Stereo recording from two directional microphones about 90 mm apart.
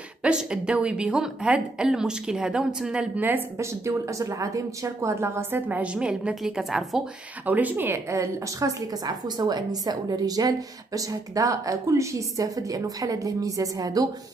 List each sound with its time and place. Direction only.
0.2 s a woman's voice: 10° right (ahead or behind)
3.5 s a woman's voice: 35° right (ahead or behind); by 7.0 s centre (ahead or behind)
7.4 s a woman's voice: 20° right (ahead or behind); by 14.0 s 45° right (ahead or behind)